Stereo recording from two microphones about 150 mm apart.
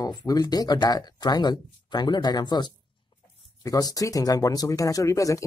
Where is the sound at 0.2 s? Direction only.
25° left (ahead or behind).